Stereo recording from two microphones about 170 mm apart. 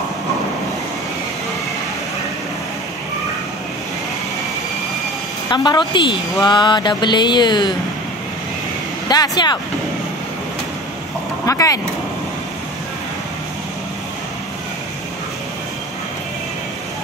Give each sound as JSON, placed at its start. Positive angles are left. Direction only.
{"t": 5.5, "sound": "mantra", "side_deg": 25}
{"t": 9.1, "sound": "mantra", "side_deg": 25}
{"t": 11.4, "sound": "mantra", "side_deg": 20}